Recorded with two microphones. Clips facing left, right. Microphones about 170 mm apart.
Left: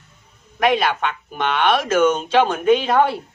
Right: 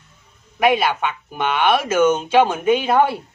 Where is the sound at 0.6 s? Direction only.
10° right (ahead or behind).